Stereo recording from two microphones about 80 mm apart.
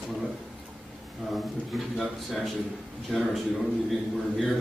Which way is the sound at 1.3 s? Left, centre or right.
Centre.